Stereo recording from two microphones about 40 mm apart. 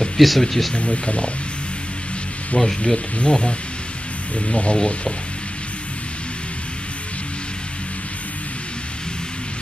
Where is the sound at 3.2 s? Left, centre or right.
Left.